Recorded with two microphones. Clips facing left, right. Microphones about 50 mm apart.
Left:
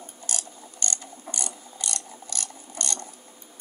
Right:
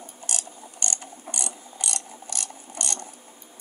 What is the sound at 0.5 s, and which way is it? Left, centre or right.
Mechanisms, right.